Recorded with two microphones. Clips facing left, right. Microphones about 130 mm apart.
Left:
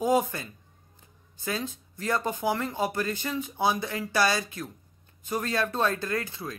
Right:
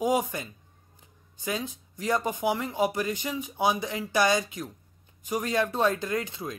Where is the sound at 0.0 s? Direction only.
15° right (ahead or behind).